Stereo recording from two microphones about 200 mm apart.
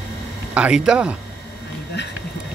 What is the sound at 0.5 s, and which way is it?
Speech, 5° right (ahead or behind).